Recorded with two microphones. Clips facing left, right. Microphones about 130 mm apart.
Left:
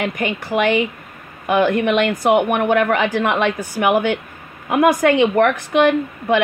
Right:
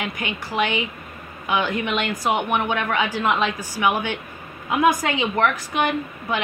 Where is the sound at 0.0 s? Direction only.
55° left (ahead or behind).